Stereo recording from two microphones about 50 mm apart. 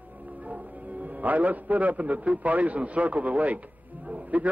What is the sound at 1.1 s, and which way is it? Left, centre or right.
A man's voice, right.